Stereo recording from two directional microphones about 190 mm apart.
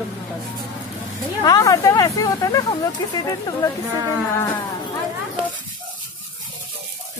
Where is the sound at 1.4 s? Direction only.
15° left (ahead or behind).